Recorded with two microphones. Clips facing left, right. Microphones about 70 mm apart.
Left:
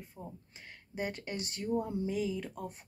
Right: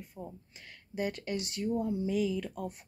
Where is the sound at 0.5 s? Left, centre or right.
Left.